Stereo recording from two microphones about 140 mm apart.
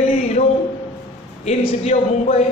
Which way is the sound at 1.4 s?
50° left (ahead or behind).